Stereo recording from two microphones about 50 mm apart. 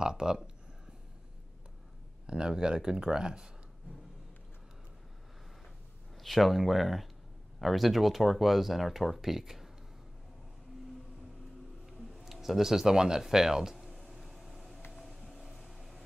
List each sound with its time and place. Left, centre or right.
0.0 s a sound: centre
2.2 s speech: centre
6.2 s speech: centre
11.8 s speech: centre
13.8 s vehicle: centre